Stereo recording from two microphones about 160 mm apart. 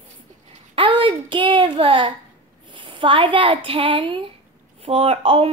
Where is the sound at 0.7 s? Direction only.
35° right (ahead or behind).